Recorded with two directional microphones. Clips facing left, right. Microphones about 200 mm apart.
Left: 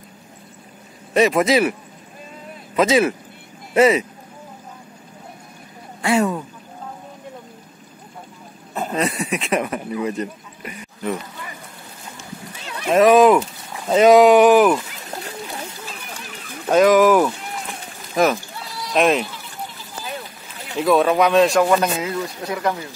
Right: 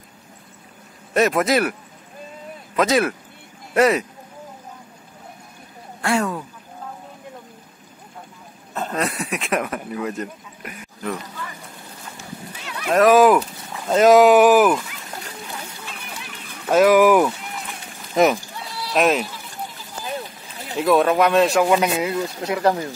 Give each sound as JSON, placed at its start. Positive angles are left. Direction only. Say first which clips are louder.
{"t": 1.1, "sound": "speech", "louder": "left 2 dB", "side_deg": 0}
{"t": 5.9, "sound": "a sound", "louder": "left 3 dB", "side_deg": 0}
{"t": 8.7, "sound": "a sound", "louder": "left 2 dB", "side_deg": 10}
{"t": 9.0, "sound": "speech", "louder": "left 3 dB", "side_deg": 0}
{"t": 12.9, "sound": "speech", "louder": "left 1 dB", "side_deg": 0}
{"t": 16.7, "sound": "speech", "louder": "even", "side_deg": -10}
{"t": 18.1, "sound": "a sound", "louder": "right 1 dB", "side_deg": -20}
{"t": 18.9, "sound": "speech", "louder": "left 1 dB", "side_deg": 0}
{"t": 20.7, "sound": "speech", "louder": "left 1 dB", "side_deg": 0}
{"t": 22.4, "sound": "speech", "louder": "right 3 dB", "side_deg": -25}